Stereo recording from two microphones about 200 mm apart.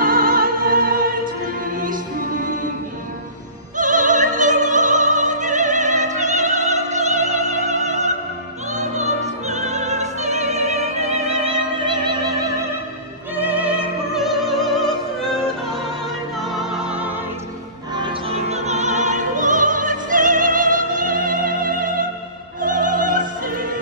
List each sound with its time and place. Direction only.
0.0 s music: 45° right (ahead or behind)
3.7 s opera: 40° right (ahead or behind); by 12.5 s 20° right (ahead or behind)
13.4 s opera: 10° right (ahead or behind)
16.3 s music: centre (ahead or behind)
17.9 s opera: 25° right (ahead or behind); by 21.9 s 45° right (ahead or behind)
22.6 s music: 45° right (ahead or behind)